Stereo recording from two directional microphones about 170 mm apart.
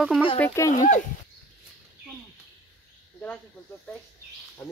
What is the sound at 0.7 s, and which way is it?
Speech, 45° left (ahead or behind).